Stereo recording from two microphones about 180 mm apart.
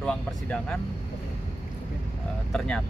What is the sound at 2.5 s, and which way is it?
Speech, 5° left (ahead or behind).